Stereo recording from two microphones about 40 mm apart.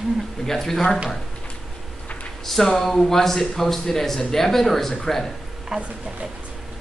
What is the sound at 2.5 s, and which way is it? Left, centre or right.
Speech, centre.